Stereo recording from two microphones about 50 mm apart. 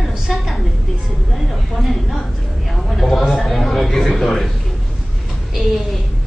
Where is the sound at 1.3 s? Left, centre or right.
Centre.